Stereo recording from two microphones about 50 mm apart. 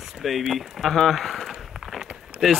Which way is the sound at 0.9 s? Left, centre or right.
Centre.